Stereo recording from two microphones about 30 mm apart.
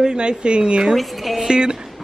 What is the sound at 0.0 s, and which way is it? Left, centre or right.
Speech, right.